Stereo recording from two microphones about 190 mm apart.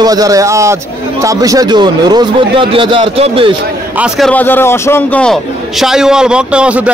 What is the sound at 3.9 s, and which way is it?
A man's voice, 5° right (ahead or behind).